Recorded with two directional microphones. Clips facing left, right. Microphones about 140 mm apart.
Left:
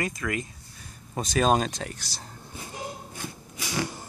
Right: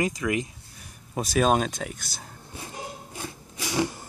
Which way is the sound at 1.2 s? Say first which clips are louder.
Right 1 dB; 5° right (ahead or behind).